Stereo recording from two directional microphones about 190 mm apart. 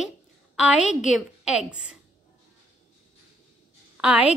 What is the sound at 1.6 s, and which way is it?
Speech, 5° right (ahead or behind).